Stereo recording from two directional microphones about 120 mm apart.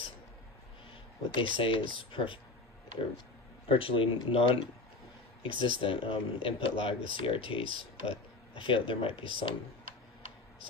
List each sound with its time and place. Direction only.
1.3 s speech: 45° left (ahead or behind)
3.7 s speech: 50° left (ahead or behind)